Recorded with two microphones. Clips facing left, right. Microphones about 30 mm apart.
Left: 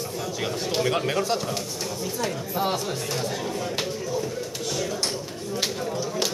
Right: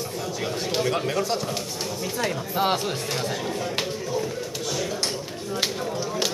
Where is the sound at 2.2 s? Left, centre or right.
Right.